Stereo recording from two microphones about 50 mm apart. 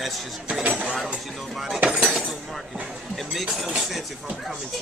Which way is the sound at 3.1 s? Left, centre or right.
Centre.